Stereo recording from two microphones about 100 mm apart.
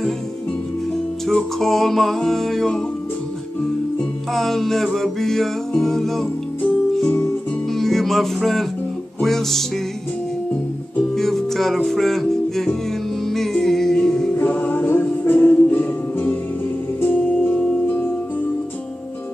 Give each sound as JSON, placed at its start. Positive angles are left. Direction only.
{"t": 1.2, "sound": "music", "side_deg": 5}
{"t": 4.3, "sound": "music", "side_deg": 5}
{"t": 7.7, "sound": "music", "side_deg": 5}
{"t": 11.0, "sound": "music", "side_deg": 5}
{"t": 14.3, "sound": "music", "side_deg": 15}